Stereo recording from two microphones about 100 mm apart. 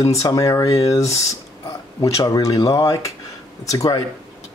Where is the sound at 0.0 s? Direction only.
35° left (ahead or behind).